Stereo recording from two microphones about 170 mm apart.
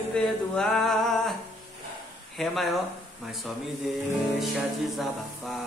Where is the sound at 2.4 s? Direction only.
Centre (ahead or behind).